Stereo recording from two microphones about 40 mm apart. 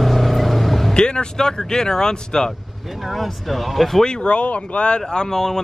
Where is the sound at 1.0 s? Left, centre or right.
Left.